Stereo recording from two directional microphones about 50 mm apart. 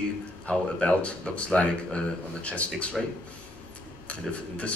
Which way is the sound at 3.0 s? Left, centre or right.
Centre.